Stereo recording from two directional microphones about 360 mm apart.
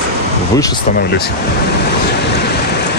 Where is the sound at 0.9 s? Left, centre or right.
Left.